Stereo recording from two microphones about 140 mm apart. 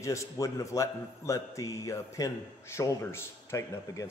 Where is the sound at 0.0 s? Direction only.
20° left (ahead or behind).